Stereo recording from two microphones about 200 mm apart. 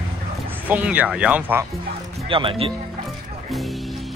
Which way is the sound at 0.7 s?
5° right (ahead or behind).